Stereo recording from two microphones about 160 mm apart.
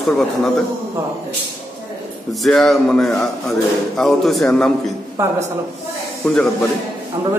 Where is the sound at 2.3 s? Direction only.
Centre (ahead or behind).